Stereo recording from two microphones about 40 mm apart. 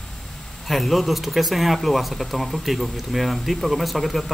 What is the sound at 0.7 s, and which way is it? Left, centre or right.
Speech, centre.